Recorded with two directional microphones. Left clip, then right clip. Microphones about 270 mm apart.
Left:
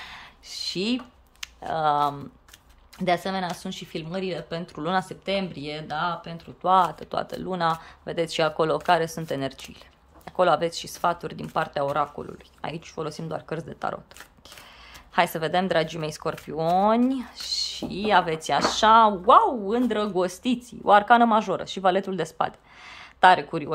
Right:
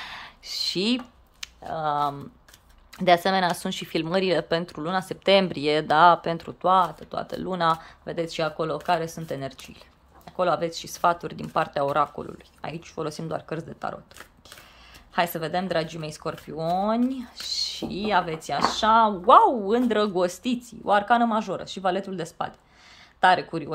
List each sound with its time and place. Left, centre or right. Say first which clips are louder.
0.0 s a sound: right 3 dB; centre
3.0 s speech: right 5 dB; centre
6.6 s speech: left 1 dB; centre
15.1 s speech: left 3 dB; centre